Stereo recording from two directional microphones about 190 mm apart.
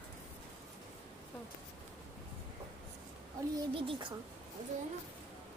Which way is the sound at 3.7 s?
25° right (ahead or behind).